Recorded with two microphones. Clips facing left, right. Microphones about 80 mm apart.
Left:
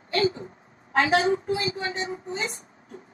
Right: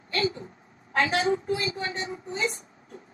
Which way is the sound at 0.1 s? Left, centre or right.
Left.